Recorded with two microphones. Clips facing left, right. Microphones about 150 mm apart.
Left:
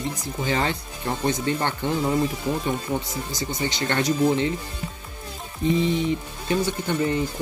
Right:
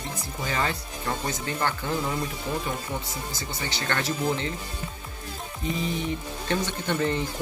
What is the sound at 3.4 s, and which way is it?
Speech, 20° left (ahead or behind).